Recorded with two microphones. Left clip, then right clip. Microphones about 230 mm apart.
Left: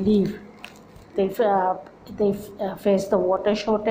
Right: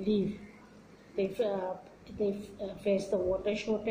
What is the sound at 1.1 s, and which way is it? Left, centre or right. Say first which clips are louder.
A woman's voice: left 11 dB; centre.